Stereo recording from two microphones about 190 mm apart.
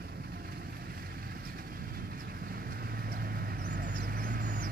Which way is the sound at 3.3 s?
55° right (ahead or behind).